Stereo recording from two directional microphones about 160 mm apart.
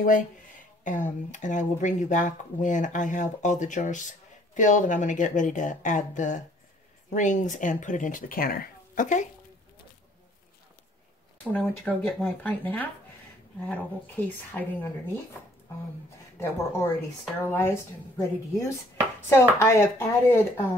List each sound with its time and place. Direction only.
0.8 s speech: 50° left (ahead or behind)
11.5 s speech: 5° left (ahead or behind)
16.3 s speech: 15° left (ahead or behind)